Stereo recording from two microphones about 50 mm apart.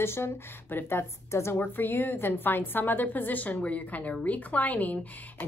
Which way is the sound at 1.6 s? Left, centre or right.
Left.